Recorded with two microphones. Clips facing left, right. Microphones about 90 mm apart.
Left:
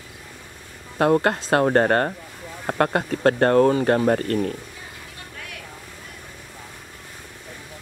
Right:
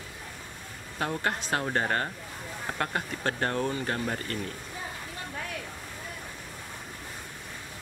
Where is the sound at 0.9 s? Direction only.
60° left (ahead or behind).